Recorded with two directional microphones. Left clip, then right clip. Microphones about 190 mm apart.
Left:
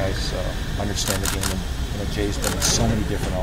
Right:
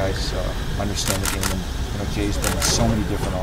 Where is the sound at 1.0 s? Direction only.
50° right (ahead or behind).